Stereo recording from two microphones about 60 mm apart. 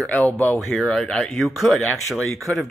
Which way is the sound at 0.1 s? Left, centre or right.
Left.